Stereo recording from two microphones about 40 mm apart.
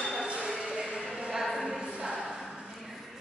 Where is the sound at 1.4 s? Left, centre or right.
Centre.